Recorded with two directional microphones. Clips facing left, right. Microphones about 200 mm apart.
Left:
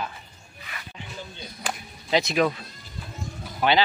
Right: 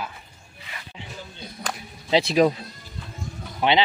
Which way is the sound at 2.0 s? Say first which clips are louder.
Right 4 dB; 30° right (ahead or behind).